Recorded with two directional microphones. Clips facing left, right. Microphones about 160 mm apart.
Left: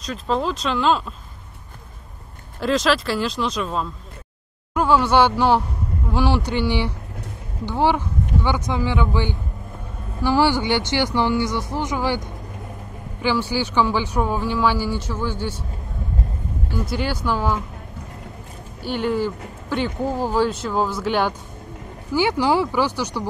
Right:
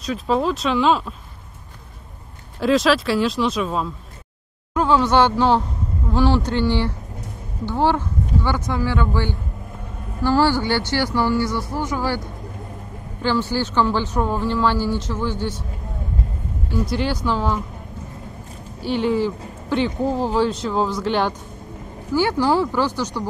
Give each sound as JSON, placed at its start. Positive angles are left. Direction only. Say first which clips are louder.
{"t": 0.0, "sound": "speech", "louder": "right 3 dB", "side_deg": 0}
{"t": 2.6, "sound": "speech", "louder": "right 3 dB", "side_deg": 0}
{"t": 13.2, "sound": "speech", "louder": "right 1 dB", "side_deg": 10}
{"t": 16.7, "sound": "speech", "louder": "right 3 dB", "side_deg": 0}
{"t": 18.9, "sound": "speech", "louder": "right 2 dB", "side_deg": 0}